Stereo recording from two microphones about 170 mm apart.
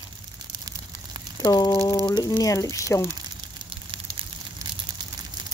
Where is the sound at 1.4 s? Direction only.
25° left (ahead or behind).